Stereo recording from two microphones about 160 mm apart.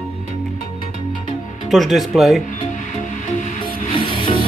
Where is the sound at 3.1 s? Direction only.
55° left (ahead or behind).